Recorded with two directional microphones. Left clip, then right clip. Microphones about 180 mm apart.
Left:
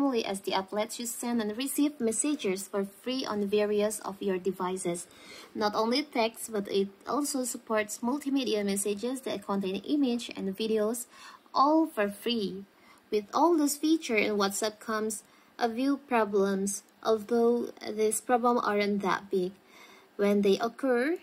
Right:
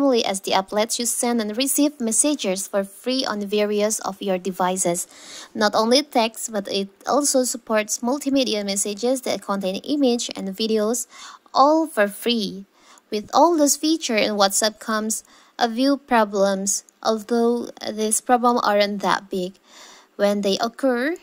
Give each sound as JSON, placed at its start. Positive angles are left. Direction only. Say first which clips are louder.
{"t": 0.0, "sound": "speech", "louder": "right 10 dB", "side_deg": -50}